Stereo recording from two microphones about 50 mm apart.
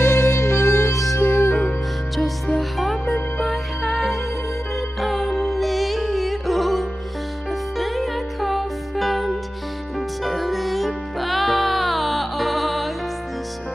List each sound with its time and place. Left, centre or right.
0.0 s music: left
1.1 s music: left
1.7 s music: centre